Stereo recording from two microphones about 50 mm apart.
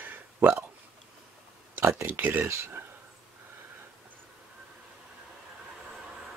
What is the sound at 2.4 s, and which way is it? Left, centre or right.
Speech, right.